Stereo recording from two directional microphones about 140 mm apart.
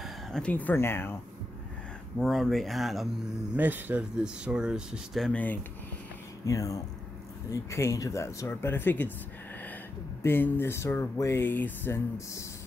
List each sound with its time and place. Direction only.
0.0 s speech: 5° left (ahead or behind)
2.1 s speech: centre (ahead or behind)
3.5 s speech: 10° right (ahead or behind); by 5.6 s 10° left (ahead or behind)
6.4 s speech: 25° left (ahead or behind)
10.2 s speech: 15° left (ahead or behind)